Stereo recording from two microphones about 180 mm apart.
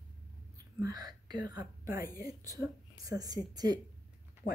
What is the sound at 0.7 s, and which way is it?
A woman's voice, 20° right (ahead or behind).